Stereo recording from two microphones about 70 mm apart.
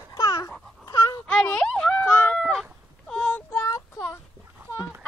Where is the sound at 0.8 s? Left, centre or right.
Left.